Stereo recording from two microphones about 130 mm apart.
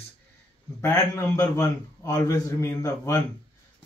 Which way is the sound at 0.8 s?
25° left (ahead or behind).